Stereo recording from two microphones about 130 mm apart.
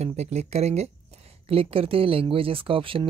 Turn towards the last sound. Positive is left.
turn(degrees=-45)  # may be behind; listen again after turning